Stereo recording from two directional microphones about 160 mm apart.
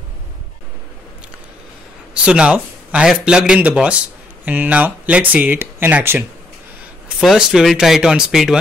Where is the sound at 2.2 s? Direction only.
5° right (ahead or behind).